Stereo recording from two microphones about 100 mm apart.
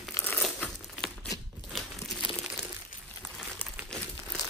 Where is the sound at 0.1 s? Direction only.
20° left (ahead or behind).